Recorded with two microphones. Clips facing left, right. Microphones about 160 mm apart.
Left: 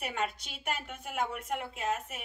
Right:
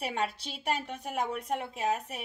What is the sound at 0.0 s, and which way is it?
A woman's voice, 35° right (ahead or behind).